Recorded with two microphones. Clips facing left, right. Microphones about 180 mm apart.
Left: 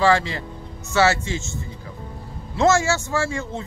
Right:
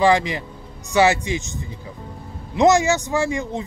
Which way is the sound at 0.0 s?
15° right (ahead or behind).